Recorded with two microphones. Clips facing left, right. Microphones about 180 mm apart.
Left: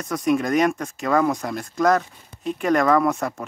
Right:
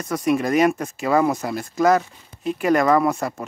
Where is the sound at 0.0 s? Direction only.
Centre (ahead or behind).